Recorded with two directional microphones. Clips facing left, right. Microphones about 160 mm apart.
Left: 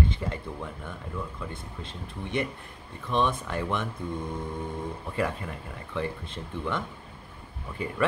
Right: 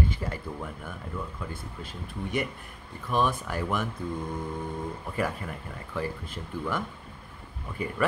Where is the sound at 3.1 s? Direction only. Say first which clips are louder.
Even; 5° right (ahead or behind).